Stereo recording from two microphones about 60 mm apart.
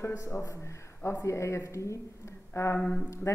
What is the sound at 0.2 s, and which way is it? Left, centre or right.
A woman's voice, left.